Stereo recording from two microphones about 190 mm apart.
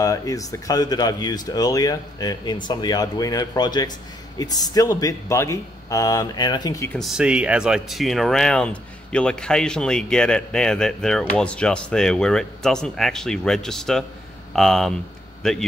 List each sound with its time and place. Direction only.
0.0 s speech: 20° left (ahead or behind)
7.0 s speech: 5° right (ahead or behind)